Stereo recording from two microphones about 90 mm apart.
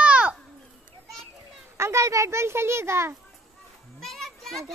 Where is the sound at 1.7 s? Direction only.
35° right (ahead or behind).